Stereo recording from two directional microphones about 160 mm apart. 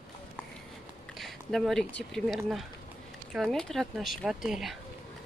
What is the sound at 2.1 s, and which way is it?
Speech, centre (ahead or behind).